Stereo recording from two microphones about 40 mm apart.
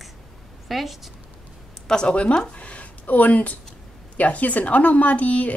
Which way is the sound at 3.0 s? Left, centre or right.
Left.